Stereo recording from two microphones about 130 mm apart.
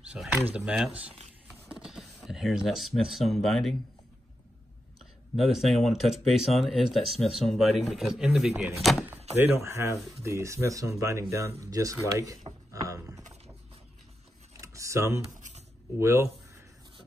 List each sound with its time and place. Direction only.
0.0 s speech: 10° right (ahead or behind)
5.3 s speech: centre (ahead or behind)
9.3 s speech: 15° right (ahead or behind)
12.8 s a sound: 25° right (ahead or behind)
14.6 s computer keyboard: 25° right (ahead or behind)
15.3 s a sound: 70° right (ahead or behind)
16.0 s speech: 20° right (ahead or behind)